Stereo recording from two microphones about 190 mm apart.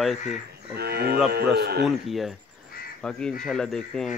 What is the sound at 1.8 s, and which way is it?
Speech, centre (ahead or behind).